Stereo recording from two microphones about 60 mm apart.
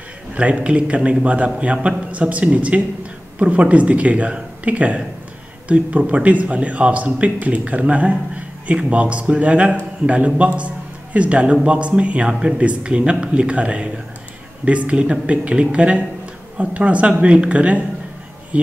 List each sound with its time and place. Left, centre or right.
0.3 s speech: right